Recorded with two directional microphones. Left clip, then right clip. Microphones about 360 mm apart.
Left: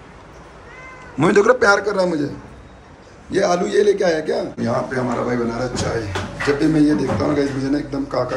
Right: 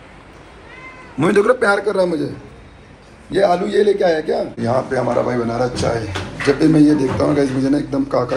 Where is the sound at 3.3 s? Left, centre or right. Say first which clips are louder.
Right 2 dB; centre.